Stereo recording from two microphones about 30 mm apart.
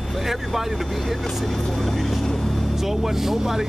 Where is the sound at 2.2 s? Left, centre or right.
Centre.